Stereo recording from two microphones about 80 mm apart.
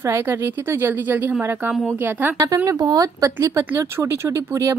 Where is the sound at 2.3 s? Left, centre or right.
Right.